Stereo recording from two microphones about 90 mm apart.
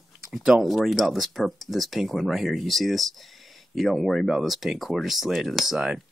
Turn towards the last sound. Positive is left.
turn(degrees=-5)  # may be behind; listen again after turning